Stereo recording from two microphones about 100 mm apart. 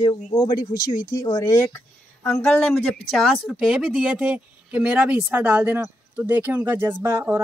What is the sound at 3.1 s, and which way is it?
A woman's voice, centre (ahead or behind).